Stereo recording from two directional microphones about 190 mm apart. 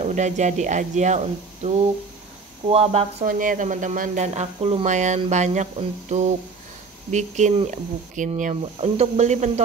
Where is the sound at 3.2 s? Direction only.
45° right (ahead or behind).